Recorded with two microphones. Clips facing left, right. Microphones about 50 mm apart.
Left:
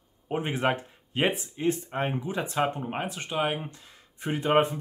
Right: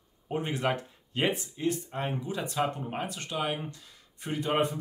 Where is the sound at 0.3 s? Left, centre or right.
Left.